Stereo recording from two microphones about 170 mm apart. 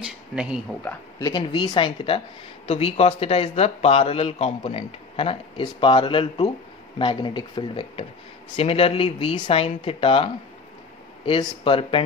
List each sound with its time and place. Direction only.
1.2 s speech: 25° left (ahead or behind)